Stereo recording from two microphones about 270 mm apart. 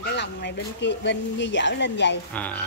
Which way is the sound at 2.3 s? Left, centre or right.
Centre.